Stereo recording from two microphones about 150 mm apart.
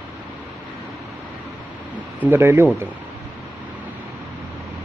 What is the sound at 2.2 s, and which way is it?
Speech, 15° right (ahead or behind).